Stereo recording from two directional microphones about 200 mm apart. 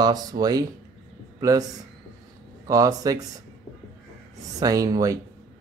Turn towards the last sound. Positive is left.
turn(degrees=-15)  # may be behind; listen again after turning